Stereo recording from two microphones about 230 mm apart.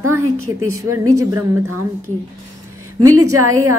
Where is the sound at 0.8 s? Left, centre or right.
Right.